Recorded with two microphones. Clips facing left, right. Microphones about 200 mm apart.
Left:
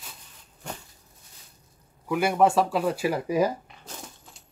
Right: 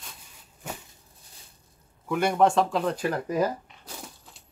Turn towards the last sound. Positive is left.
turn(degrees=0)  # may be behind; listen again after turning